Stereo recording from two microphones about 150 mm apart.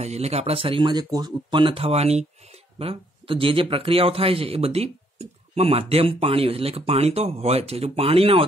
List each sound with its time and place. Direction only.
0.0 s speech: 45° right (ahead or behind)